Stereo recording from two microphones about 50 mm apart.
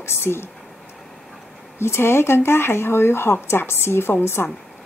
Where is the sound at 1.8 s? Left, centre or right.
Left.